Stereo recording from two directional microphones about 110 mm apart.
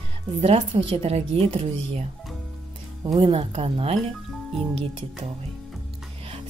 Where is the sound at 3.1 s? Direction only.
65° right (ahead or behind).